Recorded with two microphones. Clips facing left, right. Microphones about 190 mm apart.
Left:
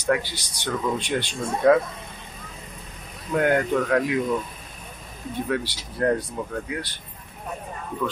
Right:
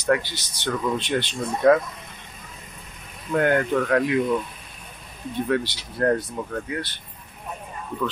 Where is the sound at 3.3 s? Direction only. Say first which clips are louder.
Even; 5° left (ahead or behind).